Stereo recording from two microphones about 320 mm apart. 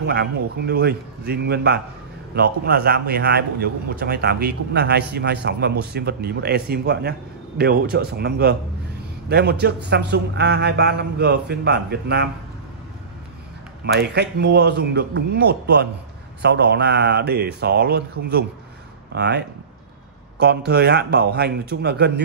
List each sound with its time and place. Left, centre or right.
0.0 s a man's voice: right
13.9 s a man's voice: right